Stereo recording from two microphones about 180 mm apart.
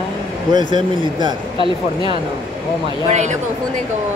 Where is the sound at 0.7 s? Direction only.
25° right (ahead or behind).